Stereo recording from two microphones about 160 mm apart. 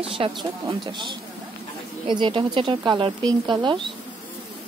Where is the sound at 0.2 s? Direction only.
35° right (ahead or behind).